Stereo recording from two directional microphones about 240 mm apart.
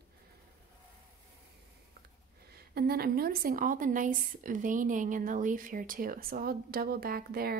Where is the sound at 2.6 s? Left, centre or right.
Right.